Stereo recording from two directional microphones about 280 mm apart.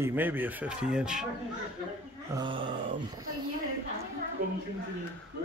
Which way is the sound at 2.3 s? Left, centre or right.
Centre.